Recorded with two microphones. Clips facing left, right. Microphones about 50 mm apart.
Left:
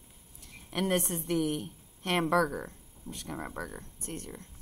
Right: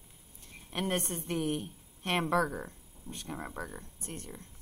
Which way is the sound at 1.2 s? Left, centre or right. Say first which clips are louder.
Left 3 dB; right.